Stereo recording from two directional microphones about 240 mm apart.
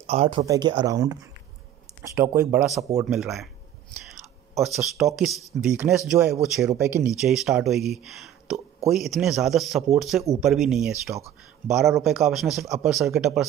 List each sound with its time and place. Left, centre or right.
0.0 s speech: right
3.1 s a man's voice: centre
4.6 s a man's voice: centre